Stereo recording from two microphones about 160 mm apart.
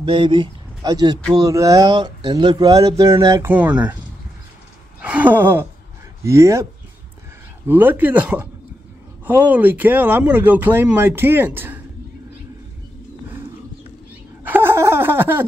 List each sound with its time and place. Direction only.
0.0 s speech: 35° right (ahead or behind)
3.5 s speech: 10° right (ahead or behind)
5.0 s speech: 10° right (ahead or behind)
14.4 s a sound: 15° right (ahead or behind)